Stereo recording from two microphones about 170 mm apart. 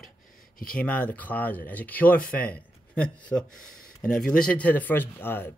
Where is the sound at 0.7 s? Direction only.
10° left (ahead or behind).